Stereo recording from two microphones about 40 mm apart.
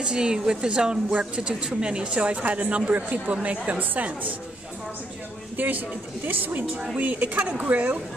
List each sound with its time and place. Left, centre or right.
0.0 s a woman's voice: right
5.6 s speech: right
7.6 s a woman's voice: right